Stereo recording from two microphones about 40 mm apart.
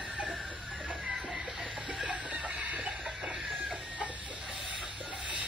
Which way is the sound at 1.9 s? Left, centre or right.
Right.